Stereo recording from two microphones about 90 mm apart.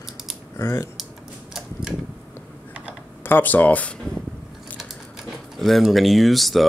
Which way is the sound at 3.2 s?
20° left (ahead or behind).